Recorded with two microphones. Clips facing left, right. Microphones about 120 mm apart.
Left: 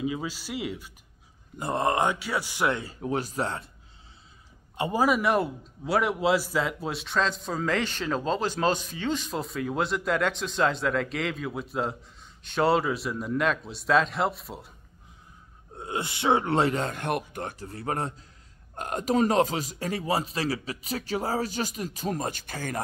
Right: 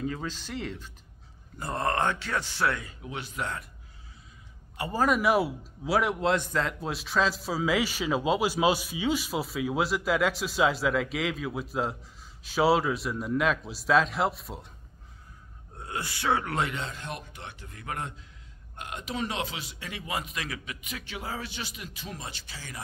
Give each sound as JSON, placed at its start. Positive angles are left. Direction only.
{"t": 0.0, "sound": "speech", "side_deg": 10}
{"t": 2.7, "sound": "a man's voice", "side_deg": 35}
{"t": 4.9, "sound": "a man's voice", "side_deg": 5}
{"t": 15.7, "sound": "speech", "side_deg": 20}
{"t": 16.8, "sound": "speech", "side_deg": 55}
{"t": 17.3, "sound": "a man's voice", "side_deg": 45}